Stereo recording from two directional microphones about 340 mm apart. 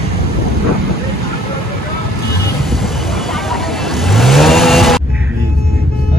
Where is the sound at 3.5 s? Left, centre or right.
Centre.